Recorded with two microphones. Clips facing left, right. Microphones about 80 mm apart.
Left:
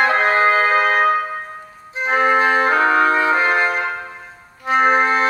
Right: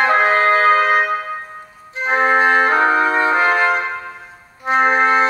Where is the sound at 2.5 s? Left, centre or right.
Centre.